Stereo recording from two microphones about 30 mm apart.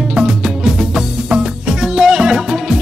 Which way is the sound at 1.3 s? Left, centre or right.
Right.